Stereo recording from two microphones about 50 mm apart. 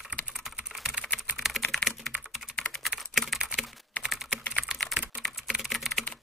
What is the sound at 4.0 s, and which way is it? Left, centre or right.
Typing, left.